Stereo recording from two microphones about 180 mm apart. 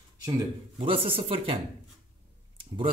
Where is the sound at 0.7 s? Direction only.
30° right (ahead or behind).